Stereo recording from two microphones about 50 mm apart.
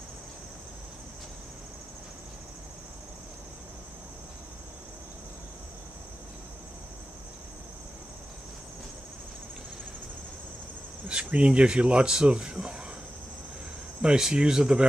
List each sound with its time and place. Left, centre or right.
11.2 s speech: right
14.0 s speech: centre